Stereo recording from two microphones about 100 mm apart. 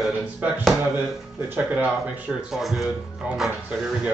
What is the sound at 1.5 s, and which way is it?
Speech, 15° right (ahead or behind).